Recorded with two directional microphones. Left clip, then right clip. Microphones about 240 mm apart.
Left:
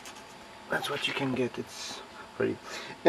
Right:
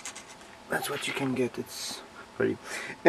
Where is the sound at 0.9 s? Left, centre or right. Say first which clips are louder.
Left 1 dB; centre.